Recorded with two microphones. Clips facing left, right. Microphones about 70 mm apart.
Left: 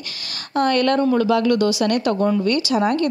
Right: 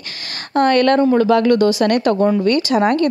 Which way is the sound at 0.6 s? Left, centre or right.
Right.